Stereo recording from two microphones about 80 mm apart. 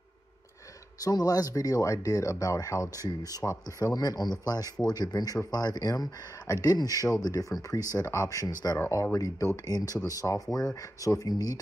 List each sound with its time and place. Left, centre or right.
1.0 s speech: left